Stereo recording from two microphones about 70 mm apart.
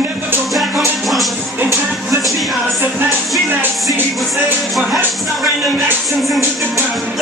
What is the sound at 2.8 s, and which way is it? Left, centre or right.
Music, right.